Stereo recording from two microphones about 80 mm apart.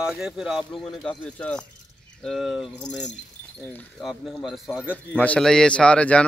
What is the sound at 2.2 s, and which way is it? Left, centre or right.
Speech, centre.